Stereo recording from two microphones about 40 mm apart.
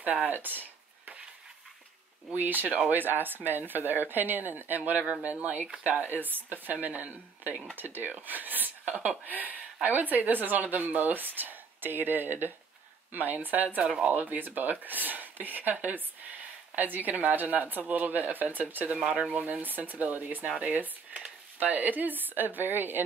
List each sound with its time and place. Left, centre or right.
0.0 s a sound: right
2.3 s a woman's voice: right
7.7 s a woman's voice: right
8.8 s a woman's voice: right
9.2 s a woman's voice: right
19.3 s a woman's voice: right